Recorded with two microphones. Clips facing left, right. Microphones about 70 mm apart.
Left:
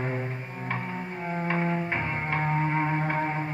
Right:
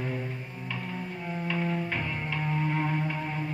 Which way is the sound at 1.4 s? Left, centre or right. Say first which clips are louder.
Left 3 dB; left.